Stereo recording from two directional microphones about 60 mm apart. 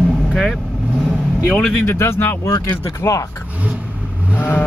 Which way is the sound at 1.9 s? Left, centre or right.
Left.